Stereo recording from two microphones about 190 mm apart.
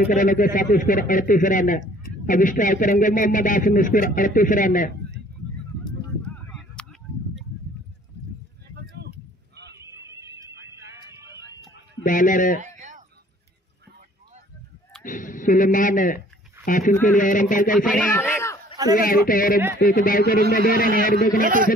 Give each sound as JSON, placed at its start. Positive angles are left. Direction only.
{"t": 0.1, "sound": "speech", "side_deg": 45}
{"t": 6.2, "sound": "honk", "side_deg": 5}
{"t": 10.1, "sound": "horse", "side_deg": -15}
{"t": 10.9, "sound": "a sound", "side_deg": -15}
{"t": 12.1, "sound": "speech", "side_deg": 45}
{"t": 12.5, "sound": "a sound", "side_deg": -40}
{"t": 15.0, "sound": "speech", "side_deg": 45}
{"t": 18.1, "sound": "a sound", "side_deg": 15}
{"t": 18.9, "sound": "speech", "side_deg": 50}
{"t": 21.4, "sound": "a man's voice", "side_deg": -45}